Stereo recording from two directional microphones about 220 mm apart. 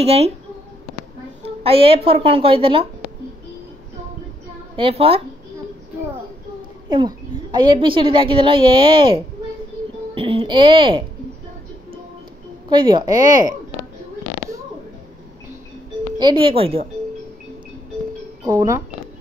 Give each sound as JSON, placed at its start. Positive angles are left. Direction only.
{"t": 0.0, "sound": "a woman's voice", "side_deg": -25}
{"t": 1.4, "sound": "a woman's voice", "side_deg": -25}
{"t": 4.7, "sound": "a woman's voice", "side_deg": -25}
{"t": 6.9, "sound": "a woman's voice", "side_deg": -20}
{"t": 12.6, "sound": "a woman's voice", "side_deg": -20}
{"t": 16.2, "sound": "a woman's voice", "side_deg": -20}
{"t": 18.4, "sound": "speech", "side_deg": -15}